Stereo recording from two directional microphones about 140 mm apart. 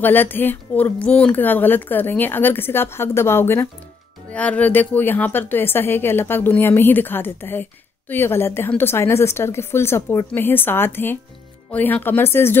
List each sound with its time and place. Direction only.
0.0 s speech: 15° left (ahead or behind)